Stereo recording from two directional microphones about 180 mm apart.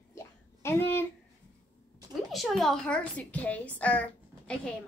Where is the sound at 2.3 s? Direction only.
Centre (ahead or behind).